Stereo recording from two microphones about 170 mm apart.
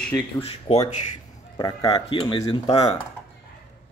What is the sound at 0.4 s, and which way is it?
Speech, 35° left (ahead or behind).